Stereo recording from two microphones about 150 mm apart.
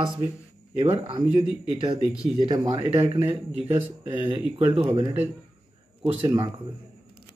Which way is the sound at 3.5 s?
15° right (ahead or behind).